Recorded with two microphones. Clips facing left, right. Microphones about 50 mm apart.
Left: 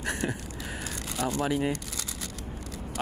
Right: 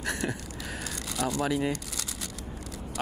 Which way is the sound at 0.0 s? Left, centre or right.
Centre.